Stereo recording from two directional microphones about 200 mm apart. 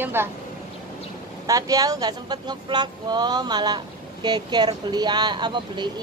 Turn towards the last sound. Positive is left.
turn(degrees=-20)  # may be behind; listen again after turning